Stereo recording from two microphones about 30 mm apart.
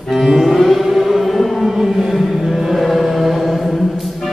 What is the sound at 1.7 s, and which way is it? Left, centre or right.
Chant, centre.